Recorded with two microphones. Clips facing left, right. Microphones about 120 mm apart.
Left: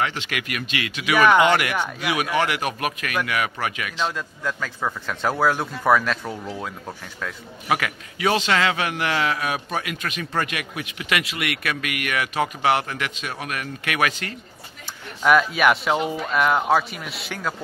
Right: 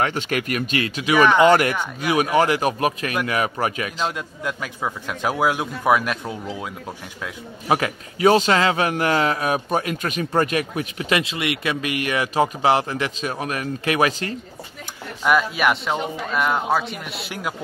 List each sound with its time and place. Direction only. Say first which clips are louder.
0.0 s a man's voice: right 4 dB; 45° right (ahead or behind)
4.1 s speech: even; 15° right (ahead or behind)
7.6 s a man's voice: right 3 dB; 35° right (ahead or behind)
15.2 s speech: left 1 dB; centre (ahead or behind)